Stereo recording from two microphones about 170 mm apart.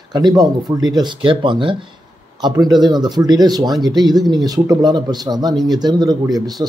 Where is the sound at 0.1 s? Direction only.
25° right (ahead or behind).